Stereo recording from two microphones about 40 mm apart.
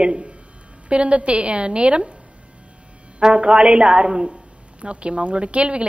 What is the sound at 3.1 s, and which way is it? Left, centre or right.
A woman's voice, right.